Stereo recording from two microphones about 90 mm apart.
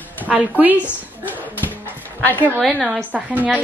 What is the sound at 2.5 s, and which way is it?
Speech, centre (ahead or behind).